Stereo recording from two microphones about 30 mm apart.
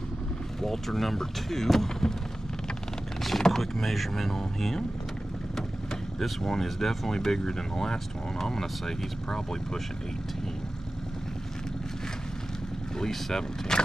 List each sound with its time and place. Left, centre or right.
0.6 s speech: centre
3.3 s speech: centre
6.1 s speech: centre
7.2 s speech: centre
13.0 s speech: centre